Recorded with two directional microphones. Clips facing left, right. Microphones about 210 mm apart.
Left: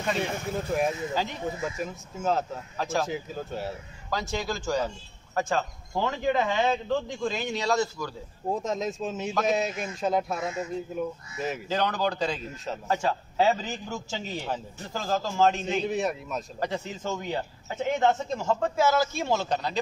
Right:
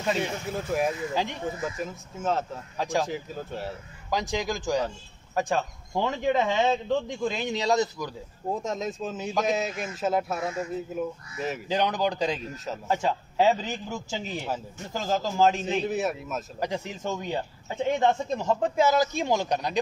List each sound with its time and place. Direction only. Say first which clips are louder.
0.5 s speech: even; centre (ahead or behind)
2.8 s a man's voice: right 1 dB; 15° right (ahead or behind)
3.1 s speech: left 1 dB; centre (ahead or behind)
4.1 s a man's voice: right 2 dB; 15° right (ahead or behind)
8.5 s speech: left 1 dB; centre (ahead or behind)
11.7 s a man's voice: right 2 dB; 15° right (ahead or behind)
14.1 s speech: right 1 dB; 5° right (ahead or behind)
14.9 s a man's voice: right 1 dB; 15° right (ahead or behind)
15.3 s speech: right 1 dB; 5° right (ahead or behind)
16.6 s a man's voice: right 1 dB; 15° right (ahead or behind)